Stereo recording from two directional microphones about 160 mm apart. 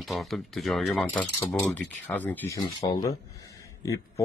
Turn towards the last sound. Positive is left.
turn(degrees=20)  # may be behind; listen again after turning